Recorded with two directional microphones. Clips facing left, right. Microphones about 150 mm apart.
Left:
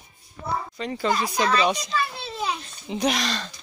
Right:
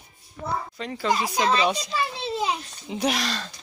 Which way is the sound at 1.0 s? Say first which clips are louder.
Right 1 dB; 15° right (ahead or behind).